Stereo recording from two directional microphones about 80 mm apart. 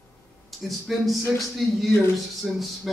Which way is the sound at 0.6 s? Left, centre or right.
Centre.